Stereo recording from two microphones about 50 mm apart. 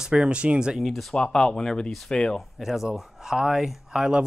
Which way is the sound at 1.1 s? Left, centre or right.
Centre.